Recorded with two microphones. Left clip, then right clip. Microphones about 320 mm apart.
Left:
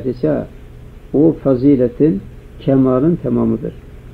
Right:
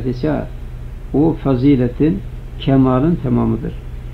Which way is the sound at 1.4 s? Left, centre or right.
Right.